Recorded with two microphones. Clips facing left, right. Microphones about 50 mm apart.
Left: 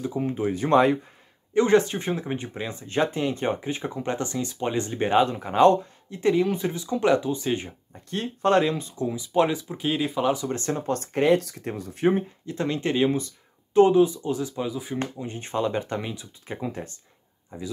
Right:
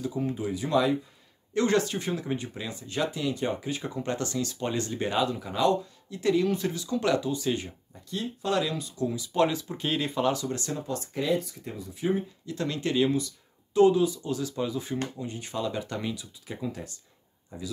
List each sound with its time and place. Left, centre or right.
0.0 s speech: left
1.5 s speech: left
8.1 s speech: left; by 10.3 s centre
10.5 s speech: left
12.4 s speech: left; by 15.0 s centre
15.0 s speech: left